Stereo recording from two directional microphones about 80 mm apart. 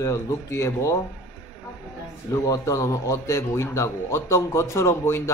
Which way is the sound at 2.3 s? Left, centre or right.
Left.